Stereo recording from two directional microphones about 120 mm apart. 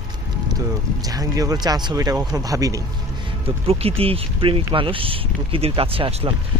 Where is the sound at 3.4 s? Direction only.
55° right (ahead or behind).